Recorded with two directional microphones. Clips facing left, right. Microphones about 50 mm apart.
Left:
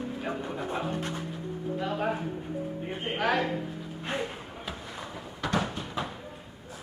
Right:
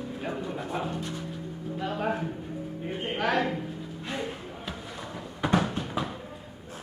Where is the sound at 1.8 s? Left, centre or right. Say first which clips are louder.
Right 2 dB; centre.